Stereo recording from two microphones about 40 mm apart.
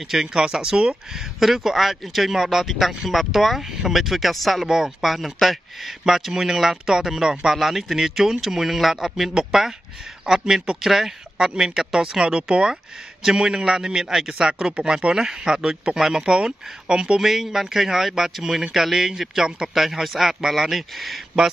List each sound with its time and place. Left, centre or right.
0.2 s speech: centre
1.1 s a man's voice: centre
4.6 s speech: centre
5.0 s speech: centre
12.2 s speech: centre
14.5 s speech: centre
17.2 s a man's voice: centre